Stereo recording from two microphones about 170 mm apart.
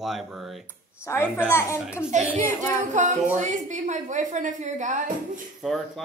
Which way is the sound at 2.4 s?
15° left (ahead or behind).